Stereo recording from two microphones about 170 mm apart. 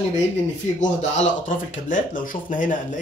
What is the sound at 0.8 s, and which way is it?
Speech, 45° left (ahead or behind).